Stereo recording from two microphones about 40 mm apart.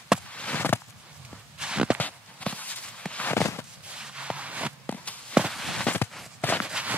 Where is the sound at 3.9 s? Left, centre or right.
Right.